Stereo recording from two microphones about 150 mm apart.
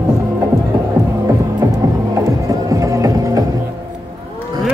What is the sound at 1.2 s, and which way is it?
Music, 20° right (ahead or behind).